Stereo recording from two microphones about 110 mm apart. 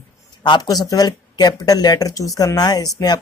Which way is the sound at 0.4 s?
40° left (ahead or behind).